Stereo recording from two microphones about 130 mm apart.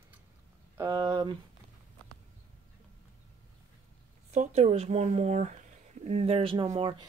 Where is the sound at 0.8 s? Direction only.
30° right (ahead or behind).